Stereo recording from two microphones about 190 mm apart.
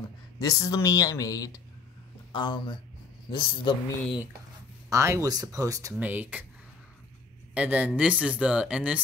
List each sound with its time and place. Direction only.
0.4 s speech: 20° left (ahead or behind)
4.8 s speech: 15° right (ahead or behind)
7.5 s speech: 5° right (ahead or behind)